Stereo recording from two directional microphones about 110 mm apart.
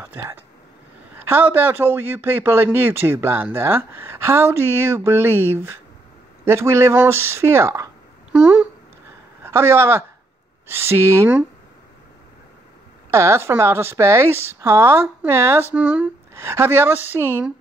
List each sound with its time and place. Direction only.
0.0 s a man's voice: 15° right (ahead or behind)
8.3 s a sound: 10° right (ahead or behind)
9.4 s a man's voice: 20° right (ahead or behind)
13.1 s a man's voice: 25° right (ahead or behind)
15.7 s speech: 10° right (ahead or behind)
16.3 s a man's voice: 25° right (ahead or behind)